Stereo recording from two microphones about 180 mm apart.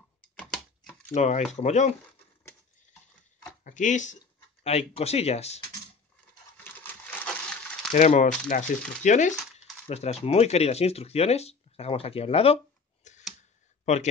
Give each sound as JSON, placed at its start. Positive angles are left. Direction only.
{"t": 0.4, "sound": "a sound", "side_deg": 10}
{"t": 1.1, "sound": "speech", "side_deg": 40}
{"t": 3.6, "sound": "speech", "side_deg": 45}
{"t": 6.6, "sound": "a sound", "side_deg": 10}
{"t": 7.9, "sound": "speech", "side_deg": 40}
{"t": 13.0, "sound": "tick", "side_deg": 40}